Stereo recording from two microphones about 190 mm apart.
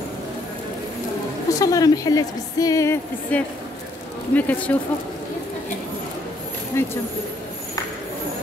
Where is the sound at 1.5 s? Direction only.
20° left (ahead or behind).